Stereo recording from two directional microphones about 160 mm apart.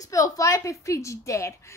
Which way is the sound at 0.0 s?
20° left (ahead or behind).